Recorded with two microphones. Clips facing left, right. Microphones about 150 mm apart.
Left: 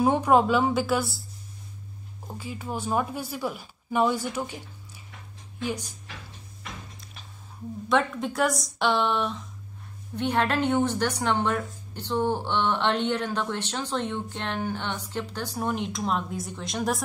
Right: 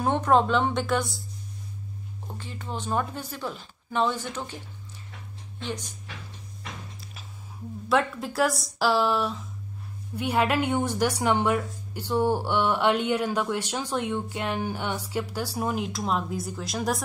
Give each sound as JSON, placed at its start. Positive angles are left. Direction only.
{"t": 0.0, "sound": "speech", "side_deg": 10}
{"t": 2.2, "sound": "speech", "side_deg": 10}
{"t": 7.9, "sound": "a woman's voice", "side_deg": 0}